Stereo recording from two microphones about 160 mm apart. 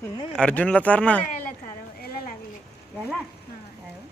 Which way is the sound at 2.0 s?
70° left (ahead or behind).